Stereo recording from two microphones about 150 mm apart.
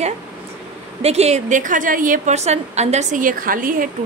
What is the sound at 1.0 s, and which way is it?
A woman's voice, 45° right (ahead or behind).